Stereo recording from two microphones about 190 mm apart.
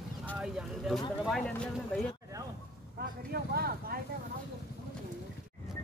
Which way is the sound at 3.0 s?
55° right (ahead or behind).